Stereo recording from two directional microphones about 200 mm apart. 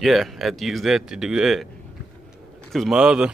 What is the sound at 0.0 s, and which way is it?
Speech, centre (ahead or behind).